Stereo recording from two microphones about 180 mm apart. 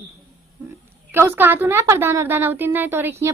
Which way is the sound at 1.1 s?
10° right (ahead or behind).